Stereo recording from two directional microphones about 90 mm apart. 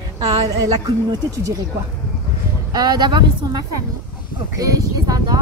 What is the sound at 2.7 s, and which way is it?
Speech, 50° right (ahead or behind).